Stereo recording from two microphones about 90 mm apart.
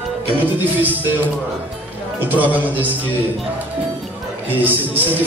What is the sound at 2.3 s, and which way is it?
Speech, 20° right (ahead or behind).